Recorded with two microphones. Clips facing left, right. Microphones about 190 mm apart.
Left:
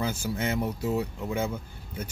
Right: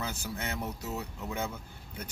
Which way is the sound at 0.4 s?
10° left (ahead or behind).